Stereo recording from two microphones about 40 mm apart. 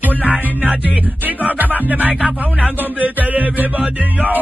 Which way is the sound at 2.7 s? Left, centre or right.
Right.